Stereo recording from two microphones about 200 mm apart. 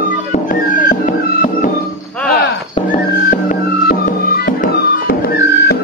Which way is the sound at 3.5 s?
45° left (ahead or behind).